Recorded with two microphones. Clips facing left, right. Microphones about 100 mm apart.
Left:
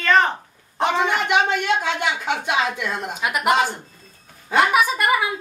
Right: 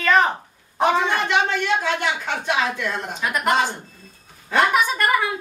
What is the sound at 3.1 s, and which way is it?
A woman's voice, 10° left (ahead or behind).